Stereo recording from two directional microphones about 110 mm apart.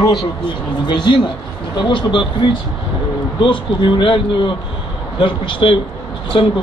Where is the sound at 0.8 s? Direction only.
45° left (ahead or behind).